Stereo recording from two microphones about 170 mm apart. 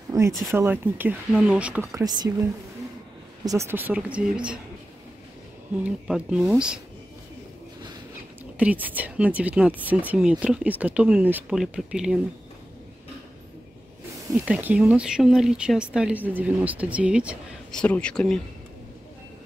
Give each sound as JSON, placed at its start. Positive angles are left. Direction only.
{"t": 0.1, "sound": "a sound", "side_deg": -20}
{"t": 0.5, "sound": "speech", "side_deg": -10}
{"t": 2.0, "sound": "speech", "side_deg": -20}
{"t": 5.9, "sound": "speech", "side_deg": -5}
{"t": 8.5, "sound": "speech", "side_deg": -10}
{"t": 14.3, "sound": "speech", "side_deg": -10}
{"t": 17.7, "sound": "speech", "side_deg": 5}